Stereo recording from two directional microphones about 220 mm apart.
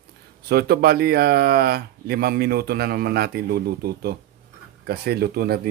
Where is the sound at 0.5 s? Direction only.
45° right (ahead or behind).